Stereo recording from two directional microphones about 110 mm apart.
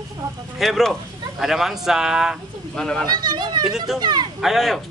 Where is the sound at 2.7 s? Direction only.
5° left (ahead or behind).